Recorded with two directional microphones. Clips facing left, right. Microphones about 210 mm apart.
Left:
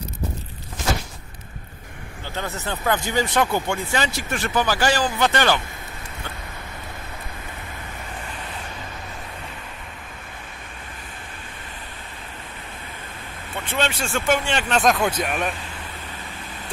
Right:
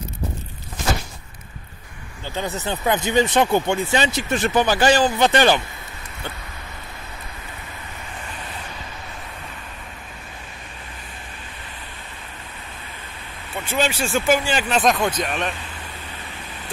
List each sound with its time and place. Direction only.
2.3 s speech: 15° right (ahead or behind)
13.7 s speech: 5° right (ahead or behind)